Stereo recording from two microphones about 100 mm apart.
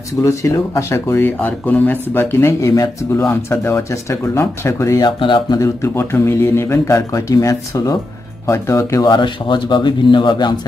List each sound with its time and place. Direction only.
0.2 s speech: 30° left (ahead or behind)
5.0 s speech: 50° left (ahead or behind)
5.6 s speech: 25° left (ahead or behind)
9.0 s speech: 50° left (ahead or behind)